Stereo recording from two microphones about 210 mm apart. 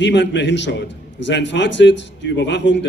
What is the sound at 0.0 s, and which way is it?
A man's voice, 60° left (ahead or behind).